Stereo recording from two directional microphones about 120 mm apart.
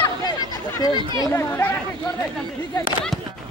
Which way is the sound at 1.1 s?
30° left (ahead or behind).